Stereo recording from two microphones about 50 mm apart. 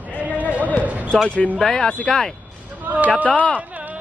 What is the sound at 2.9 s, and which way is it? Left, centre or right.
Speech, right.